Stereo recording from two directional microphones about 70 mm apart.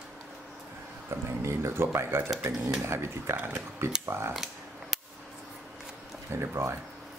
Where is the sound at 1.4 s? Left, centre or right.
Right.